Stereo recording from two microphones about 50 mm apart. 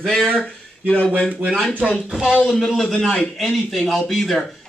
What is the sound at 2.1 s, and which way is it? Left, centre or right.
Speech, centre.